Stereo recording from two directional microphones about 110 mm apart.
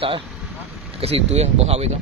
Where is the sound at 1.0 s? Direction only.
65° right (ahead or behind).